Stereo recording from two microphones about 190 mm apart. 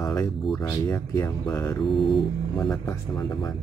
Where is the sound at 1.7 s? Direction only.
Centre (ahead or behind).